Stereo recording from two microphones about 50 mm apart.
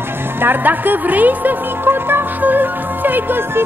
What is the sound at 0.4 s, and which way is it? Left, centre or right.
Music, right.